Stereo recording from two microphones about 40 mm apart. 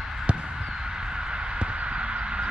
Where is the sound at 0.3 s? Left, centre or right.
Right.